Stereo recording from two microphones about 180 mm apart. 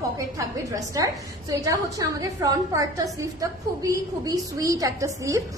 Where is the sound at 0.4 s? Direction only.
20° right (ahead or behind).